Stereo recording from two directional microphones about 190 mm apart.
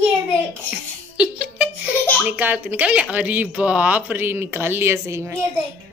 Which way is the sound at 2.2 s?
10° right (ahead or behind).